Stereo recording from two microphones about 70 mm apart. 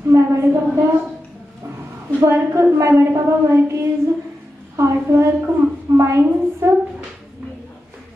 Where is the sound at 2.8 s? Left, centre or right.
Right.